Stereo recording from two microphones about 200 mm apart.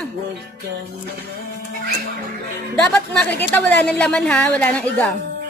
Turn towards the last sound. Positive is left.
turn(degrees=5)  # may be behind; listen again after turning